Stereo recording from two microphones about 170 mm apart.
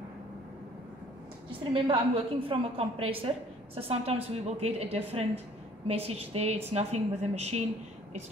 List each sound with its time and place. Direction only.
1.7 s a woman's voice: 30° right (ahead or behind)